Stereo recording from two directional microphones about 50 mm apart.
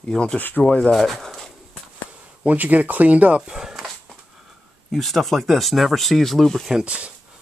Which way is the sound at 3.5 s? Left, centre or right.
Centre.